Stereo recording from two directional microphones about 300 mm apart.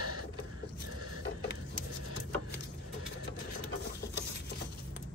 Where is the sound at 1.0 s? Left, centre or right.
Right.